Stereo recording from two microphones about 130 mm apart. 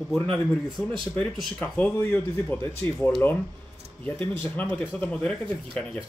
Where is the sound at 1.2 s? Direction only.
10° left (ahead or behind).